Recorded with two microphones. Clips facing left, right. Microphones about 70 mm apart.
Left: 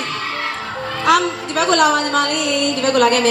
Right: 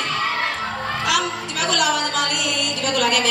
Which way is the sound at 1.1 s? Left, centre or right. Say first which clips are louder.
Left 9 dB; left.